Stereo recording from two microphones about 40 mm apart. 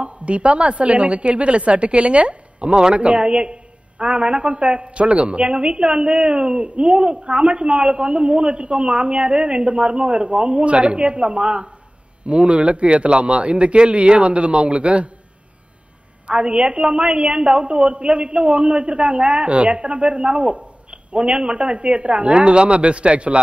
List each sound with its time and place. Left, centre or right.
0.0 s a woman's voice: right
16.3 s a woman's voice: right